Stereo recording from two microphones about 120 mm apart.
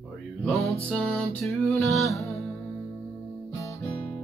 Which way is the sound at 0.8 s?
5° left (ahead or behind).